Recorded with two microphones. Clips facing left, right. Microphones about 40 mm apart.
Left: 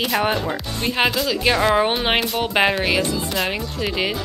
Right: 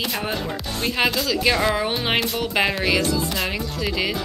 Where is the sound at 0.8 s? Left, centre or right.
Centre.